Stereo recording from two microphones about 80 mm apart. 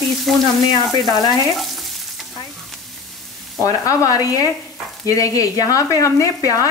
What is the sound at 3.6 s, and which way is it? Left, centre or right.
Speech, left.